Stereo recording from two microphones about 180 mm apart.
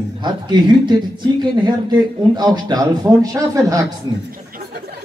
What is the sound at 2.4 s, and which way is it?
A woman's voice, 25° right (ahead or behind).